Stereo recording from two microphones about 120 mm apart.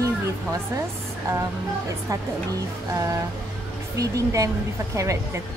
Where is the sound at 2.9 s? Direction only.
25° right (ahead or behind).